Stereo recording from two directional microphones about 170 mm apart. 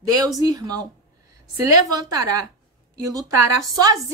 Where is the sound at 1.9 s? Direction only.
20° right (ahead or behind).